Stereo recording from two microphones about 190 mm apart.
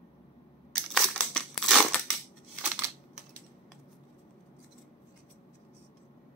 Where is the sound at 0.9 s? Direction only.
Centre (ahead or behind).